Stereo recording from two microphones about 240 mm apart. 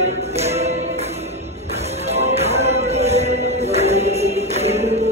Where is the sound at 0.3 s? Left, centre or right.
Right.